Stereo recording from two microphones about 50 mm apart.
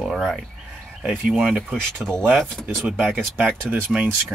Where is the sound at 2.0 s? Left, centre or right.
Right.